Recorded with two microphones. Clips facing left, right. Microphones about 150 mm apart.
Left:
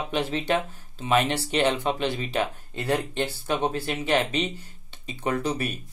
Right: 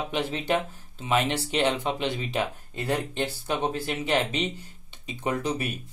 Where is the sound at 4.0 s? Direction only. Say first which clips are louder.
Left 2 dB; 15° right (ahead or behind).